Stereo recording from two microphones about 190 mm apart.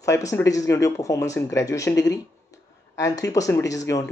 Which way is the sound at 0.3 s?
15° left (ahead or behind).